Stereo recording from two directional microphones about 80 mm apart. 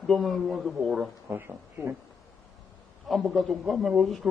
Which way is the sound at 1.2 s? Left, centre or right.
Right.